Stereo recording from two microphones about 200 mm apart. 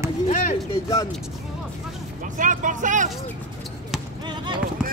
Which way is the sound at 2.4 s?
40° right (ahead or behind).